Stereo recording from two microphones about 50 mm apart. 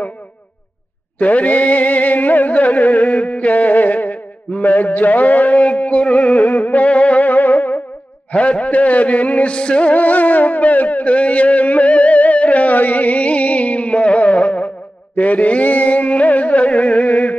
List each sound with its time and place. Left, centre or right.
1.2 s music: left